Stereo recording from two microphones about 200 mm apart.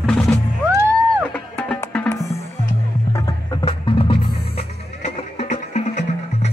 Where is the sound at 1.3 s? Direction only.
5° left (ahead or behind).